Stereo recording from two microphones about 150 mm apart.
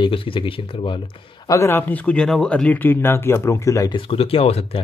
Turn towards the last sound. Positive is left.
turn(degrees=40)  # may be behind; listen again after turning